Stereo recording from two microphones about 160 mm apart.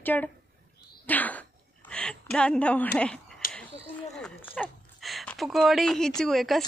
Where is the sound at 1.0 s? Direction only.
10° left (ahead or behind).